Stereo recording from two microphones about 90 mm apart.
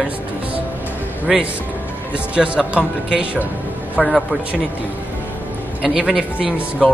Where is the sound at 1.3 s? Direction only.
5° right (ahead or behind).